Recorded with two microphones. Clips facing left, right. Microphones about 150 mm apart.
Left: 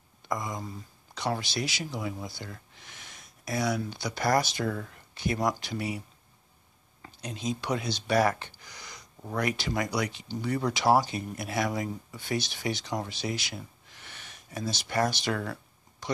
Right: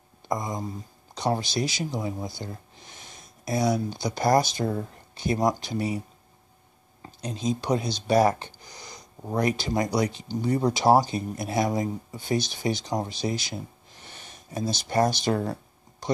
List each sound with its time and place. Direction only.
0.3 s a sound: 30° right (ahead or behind)
1.4 s speech: 45° right (ahead or behind)
2.4 s a sound: 35° right (ahead or behind)
3.9 s speech: 40° right (ahead or behind)
4.6 s speech: 25° right (ahead or behind)
10.7 s speech: 40° right (ahead or behind)
12.3 s speech: 40° right (ahead or behind)
13.1 s a sound: 40° right (ahead or behind)
14.7 s speech: 35° right (ahead or behind)
15.3 s speech: 30° right (ahead or behind)